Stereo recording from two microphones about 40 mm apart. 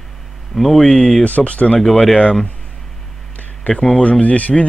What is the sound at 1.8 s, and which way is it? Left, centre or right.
Speech, centre.